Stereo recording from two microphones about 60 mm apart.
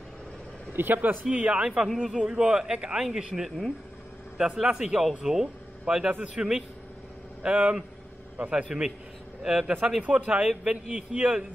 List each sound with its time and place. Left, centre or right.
0.7 s speech: right
1.2 s a man's voice: right
10.0 s speech: right